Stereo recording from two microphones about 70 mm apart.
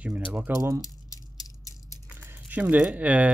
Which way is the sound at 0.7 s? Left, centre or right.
Left.